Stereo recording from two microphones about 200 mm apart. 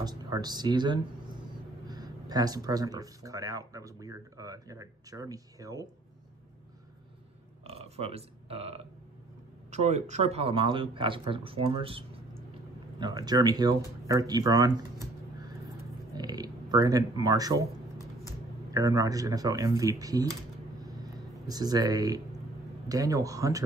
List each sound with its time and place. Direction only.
0.0 s speech: 20° right (ahead or behind)
7.6 s speech: 30° right (ahead or behind)
13.0 s speech: 20° right (ahead or behind)
16.2 s a sound: 20° right (ahead or behind)
16.7 s speech: 15° right (ahead or behind)
18.7 s speech: 15° right (ahead or behind)
20.8 s a sound: 20° right (ahead or behind)
22.8 s speech: 15° right (ahead or behind)